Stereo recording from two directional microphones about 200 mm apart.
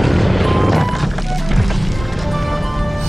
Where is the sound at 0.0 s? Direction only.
Centre (ahead or behind).